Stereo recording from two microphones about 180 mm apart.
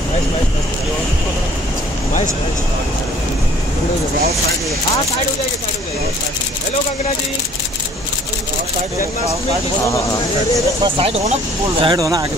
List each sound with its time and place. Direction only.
10.8 s speech: 30° right (ahead or behind)